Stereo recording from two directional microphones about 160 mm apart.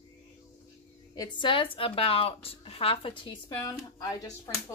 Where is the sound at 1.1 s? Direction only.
25° left (ahead or behind).